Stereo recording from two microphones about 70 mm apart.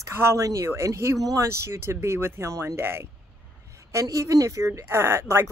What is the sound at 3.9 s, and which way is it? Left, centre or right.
Speech, right.